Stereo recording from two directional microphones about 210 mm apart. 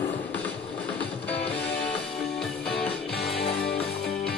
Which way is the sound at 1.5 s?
50° left (ahead or behind).